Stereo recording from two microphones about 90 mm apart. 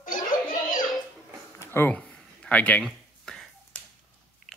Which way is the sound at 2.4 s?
15° left (ahead or behind).